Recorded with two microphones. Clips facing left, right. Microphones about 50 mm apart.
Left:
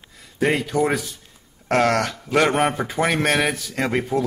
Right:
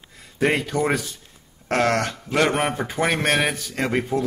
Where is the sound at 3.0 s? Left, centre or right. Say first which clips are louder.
Left 1 dB; centre.